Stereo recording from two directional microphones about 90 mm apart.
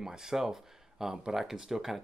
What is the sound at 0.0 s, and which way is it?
Speech, 5° right (ahead or behind).